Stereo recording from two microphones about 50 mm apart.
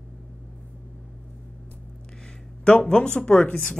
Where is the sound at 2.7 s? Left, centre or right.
Left.